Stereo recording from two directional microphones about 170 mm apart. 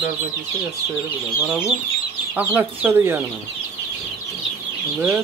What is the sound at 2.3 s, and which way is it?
Speech, 10° right (ahead or behind).